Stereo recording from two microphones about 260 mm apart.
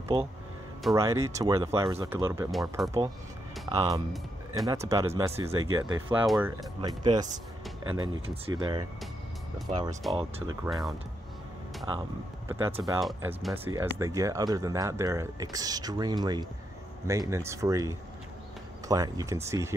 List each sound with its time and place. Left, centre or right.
0.9 s speech: centre
2.5 s speech: centre
3.6 s speech: centre
6.2 s speech: centre
6.8 s speech: centre
12.4 s speech: centre